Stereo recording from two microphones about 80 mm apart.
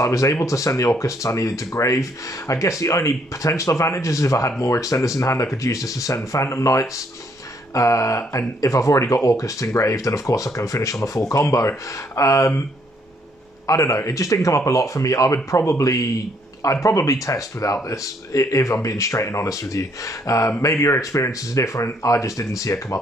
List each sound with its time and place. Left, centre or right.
0.0 s speech: left
13.7 s speech: left